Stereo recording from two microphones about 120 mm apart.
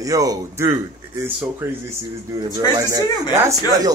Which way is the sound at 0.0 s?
30° right (ahead or behind).